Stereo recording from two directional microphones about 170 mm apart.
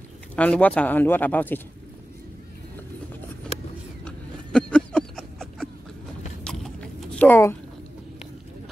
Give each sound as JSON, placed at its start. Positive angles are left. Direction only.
{"t": 0.4, "sound": "speech", "side_deg": 10}
{"t": 4.0, "sound": "a sound", "side_deg": 5}
{"t": 6.4, "sound": "biting", "side_deg": 5}